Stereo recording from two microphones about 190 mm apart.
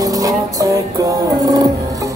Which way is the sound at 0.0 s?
20° right (ahead or behind).